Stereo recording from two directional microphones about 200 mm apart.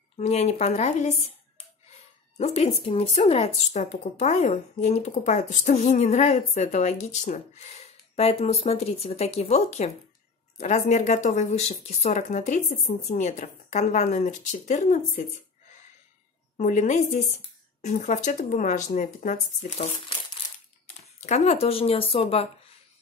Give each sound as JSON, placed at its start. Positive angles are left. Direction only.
{"t": 0.2, "sound": "speech", "side_deg": 35}
{"t": 16.5, "sound": "speech", "side_deg": 40}
{"t": 21.0, "sound": "speech", "side_deg": 35}